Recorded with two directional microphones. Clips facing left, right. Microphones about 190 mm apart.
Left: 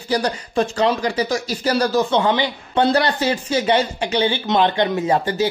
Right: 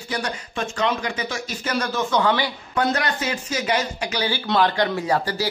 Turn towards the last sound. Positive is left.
turn(degrees=20)  # may be behind; listen again after turning